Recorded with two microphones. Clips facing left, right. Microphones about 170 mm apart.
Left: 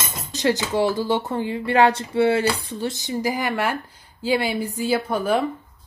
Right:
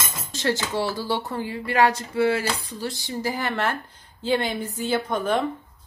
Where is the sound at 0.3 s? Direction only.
15° left (ahead or behind).